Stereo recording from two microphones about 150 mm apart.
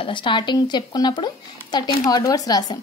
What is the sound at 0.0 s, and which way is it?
Speech, 35° left (ahead or behind).